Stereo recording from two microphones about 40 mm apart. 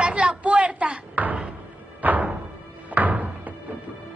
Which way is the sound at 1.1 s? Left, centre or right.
Right.